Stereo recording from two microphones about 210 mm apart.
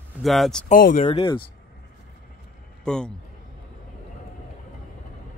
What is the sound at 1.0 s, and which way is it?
Speech, 25° left (ahead or behind).